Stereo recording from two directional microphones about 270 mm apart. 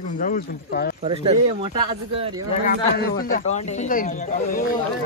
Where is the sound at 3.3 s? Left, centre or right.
Left.